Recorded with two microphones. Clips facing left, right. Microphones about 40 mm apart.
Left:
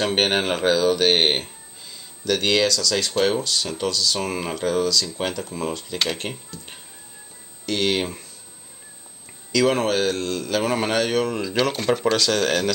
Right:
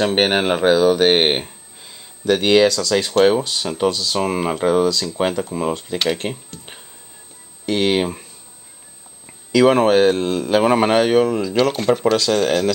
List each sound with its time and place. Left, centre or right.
0.0 s speech: centre
7.6 s speech: centre
9.5 s speech: centre
11.2 s speech: centre